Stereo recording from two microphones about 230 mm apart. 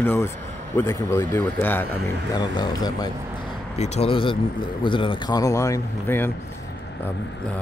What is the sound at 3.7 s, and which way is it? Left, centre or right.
A man's voice, left.